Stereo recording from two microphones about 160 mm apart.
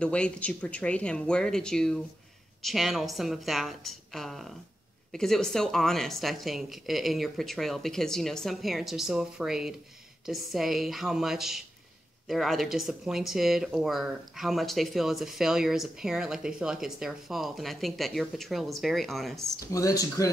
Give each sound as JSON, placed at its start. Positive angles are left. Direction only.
{"t": 0.0, "sound": "speech", "side_deg": 5}
{"t": 19.7, "sound": "speech", "side_deg": 20}